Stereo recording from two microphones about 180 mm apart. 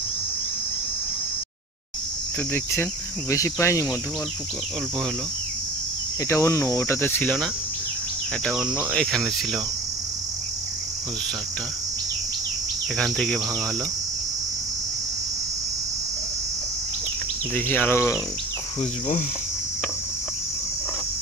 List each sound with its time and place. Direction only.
2.5 s cricket: 15° left (ahead or behind)
6.2 s cricket: 15° left (ahead or behind)
8.7 s cricket: 5° left (ahead or behind)
12.9 s cricket: 5° left (ahead or behind)
17.6 s cricket: 10° left (ahead or behind)